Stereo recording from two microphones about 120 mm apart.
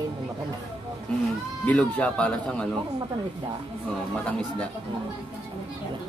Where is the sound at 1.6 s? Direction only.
10° left (ahead or behind).